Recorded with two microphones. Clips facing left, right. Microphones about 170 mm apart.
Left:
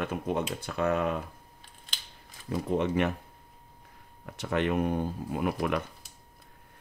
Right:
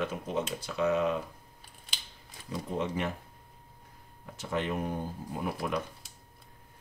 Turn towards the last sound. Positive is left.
turn(degrees=70)  # may be behind; listen again after turning